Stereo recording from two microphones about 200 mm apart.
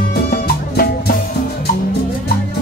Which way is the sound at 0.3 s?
50° left (ahead or behind).